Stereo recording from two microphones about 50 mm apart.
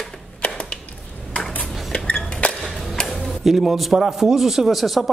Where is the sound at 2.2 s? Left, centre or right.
Left.